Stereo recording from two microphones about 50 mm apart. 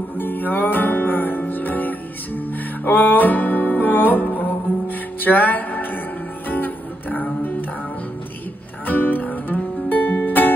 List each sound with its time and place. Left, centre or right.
0.2 s music: left
8.8 s music: left